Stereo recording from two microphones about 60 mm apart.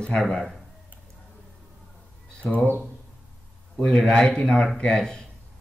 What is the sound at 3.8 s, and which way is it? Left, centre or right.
Speech, centre.